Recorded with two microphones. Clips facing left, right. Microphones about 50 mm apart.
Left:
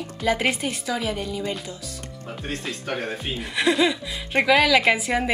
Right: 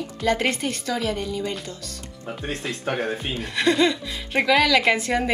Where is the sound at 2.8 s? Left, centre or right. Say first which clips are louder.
Right 4 dB; right.